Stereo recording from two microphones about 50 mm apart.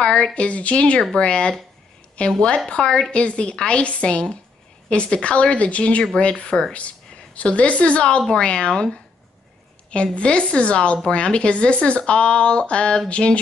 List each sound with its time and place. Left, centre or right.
0.0 s speech: centre
10.1 s speech: left